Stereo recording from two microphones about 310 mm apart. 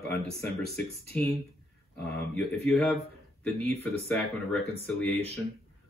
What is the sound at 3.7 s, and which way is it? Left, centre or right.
Speech, centre.